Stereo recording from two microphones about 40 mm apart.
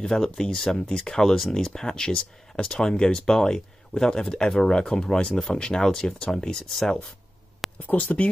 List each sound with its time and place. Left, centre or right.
0.0 s speech: centre
7.6 s a sound: centre
8.0 s speech: left